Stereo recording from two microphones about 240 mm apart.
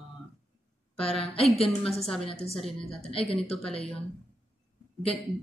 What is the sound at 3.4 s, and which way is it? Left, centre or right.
Speech, centre.